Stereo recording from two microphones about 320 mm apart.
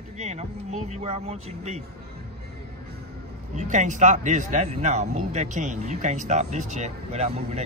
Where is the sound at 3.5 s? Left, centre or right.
Right.